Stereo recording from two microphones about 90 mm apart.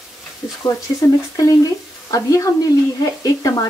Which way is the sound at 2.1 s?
40° left (ahead or behind).